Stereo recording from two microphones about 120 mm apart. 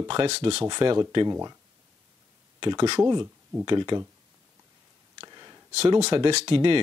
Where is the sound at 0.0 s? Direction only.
40° right (ahead or behind).